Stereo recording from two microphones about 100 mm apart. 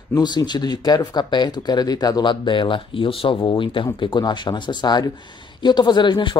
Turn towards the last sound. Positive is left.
turn(degrees=50)  # may be behind; listen again after turning